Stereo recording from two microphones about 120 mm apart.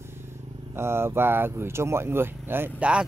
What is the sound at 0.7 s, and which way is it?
Speech, 20° right (ahead or behind).